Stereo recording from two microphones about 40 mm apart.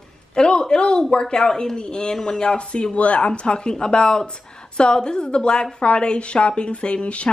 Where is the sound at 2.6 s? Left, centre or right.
Left.